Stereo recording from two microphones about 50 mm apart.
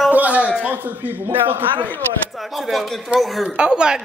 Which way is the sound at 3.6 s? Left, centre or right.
Centre.